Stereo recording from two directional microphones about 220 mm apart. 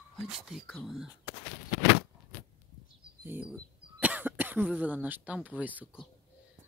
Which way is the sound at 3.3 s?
5° right (ahead or behind).